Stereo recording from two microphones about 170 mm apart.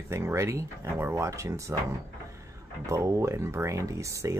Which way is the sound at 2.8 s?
15° right (ahead or behind).